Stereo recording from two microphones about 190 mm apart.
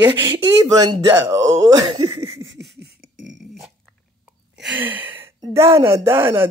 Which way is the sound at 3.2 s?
Centre (ahead or behind).